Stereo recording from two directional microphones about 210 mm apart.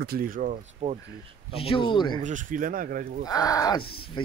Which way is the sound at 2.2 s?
35° right (ahead or behind).